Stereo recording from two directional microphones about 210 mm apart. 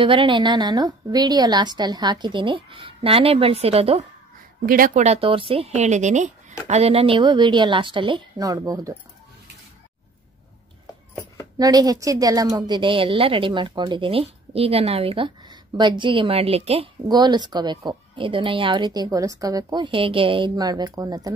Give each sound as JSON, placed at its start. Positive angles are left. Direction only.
{"t": 0.0, "sound": "a woman's voice", "side_deg": -25}
{"t": 4.6, "sound": "a woman's voice", "side_deg": -40}
{"t": 11.5, "sound": "a woman's voice", "side_deg": -20}